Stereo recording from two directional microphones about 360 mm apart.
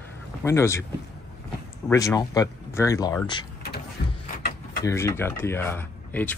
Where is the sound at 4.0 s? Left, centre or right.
Left.